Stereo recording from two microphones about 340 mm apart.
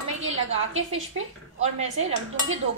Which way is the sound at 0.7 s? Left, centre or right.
Right.